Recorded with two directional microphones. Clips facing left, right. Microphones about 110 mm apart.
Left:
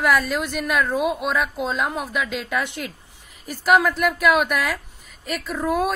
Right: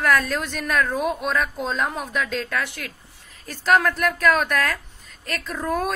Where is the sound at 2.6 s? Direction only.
20° left (ahead or behind).